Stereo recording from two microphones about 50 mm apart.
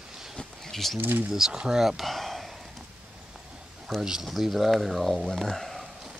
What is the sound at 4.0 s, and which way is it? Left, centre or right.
Speech, centre.